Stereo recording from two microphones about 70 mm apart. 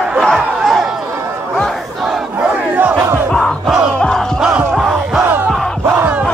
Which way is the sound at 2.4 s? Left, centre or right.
Right.